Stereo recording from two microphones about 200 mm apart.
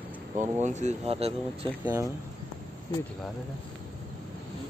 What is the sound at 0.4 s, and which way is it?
Speech, 35° right (ahead or behind).